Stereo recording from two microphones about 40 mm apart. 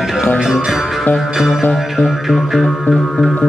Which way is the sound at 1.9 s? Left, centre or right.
Centre.